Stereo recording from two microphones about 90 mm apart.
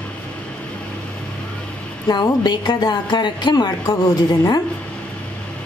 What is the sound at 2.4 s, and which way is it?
Speech, 55° left (ahead or behind).